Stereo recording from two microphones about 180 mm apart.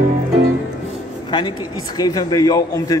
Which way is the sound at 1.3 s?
25° left (ahead or behind).